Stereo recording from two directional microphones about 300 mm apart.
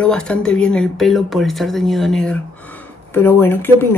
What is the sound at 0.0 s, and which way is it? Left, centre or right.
A woman's voice, centre.